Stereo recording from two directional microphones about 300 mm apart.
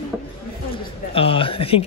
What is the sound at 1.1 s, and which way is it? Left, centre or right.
Speech, centre.